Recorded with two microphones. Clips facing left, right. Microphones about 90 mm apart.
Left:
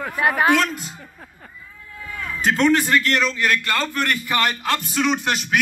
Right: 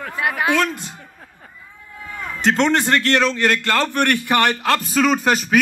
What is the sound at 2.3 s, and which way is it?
A man's voice, 70° right (ahead or behind).